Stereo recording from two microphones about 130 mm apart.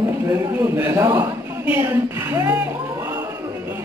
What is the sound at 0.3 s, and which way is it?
A man's voice, 20° right (ahead or behind).